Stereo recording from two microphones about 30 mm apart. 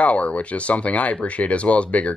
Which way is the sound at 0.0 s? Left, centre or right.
Left.